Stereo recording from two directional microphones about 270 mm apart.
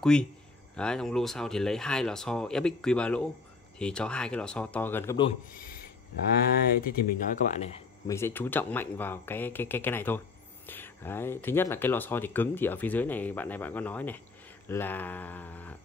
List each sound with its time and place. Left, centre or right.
0.0 s speech: centre
5.6 s a sound: left
6.8 s speech: left
8.1 s speech: centre